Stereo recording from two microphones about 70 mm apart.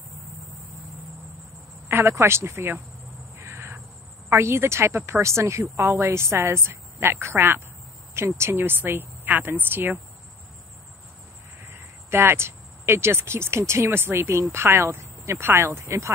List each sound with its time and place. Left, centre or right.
1.9 s a woman's voice: right
3.3 s bird: right
4.4 s a woman's voice: right
11.7 s a woman's voice: right